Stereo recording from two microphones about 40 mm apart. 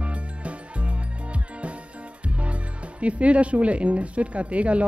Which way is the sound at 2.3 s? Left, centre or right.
Right.